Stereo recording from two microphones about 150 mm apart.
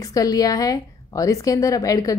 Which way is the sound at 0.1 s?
25° left (ahead or behind).